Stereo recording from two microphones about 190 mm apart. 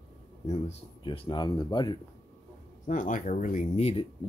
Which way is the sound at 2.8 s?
45° left (ahead or behind).